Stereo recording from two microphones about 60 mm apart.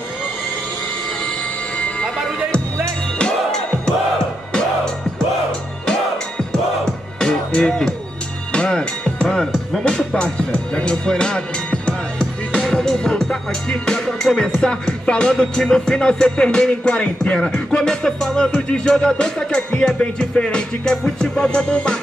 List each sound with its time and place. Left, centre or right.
3.2 s music: centre
12.6 s music: centre